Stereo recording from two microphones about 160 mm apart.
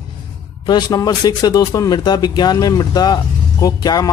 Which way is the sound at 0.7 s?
25° left (ahead or behind).